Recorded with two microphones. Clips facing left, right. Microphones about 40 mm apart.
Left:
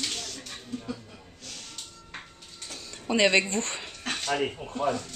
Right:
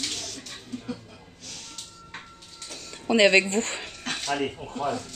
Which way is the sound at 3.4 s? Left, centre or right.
Right.